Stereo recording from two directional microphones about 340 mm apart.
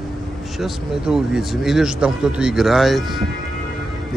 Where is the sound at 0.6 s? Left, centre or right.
Centre.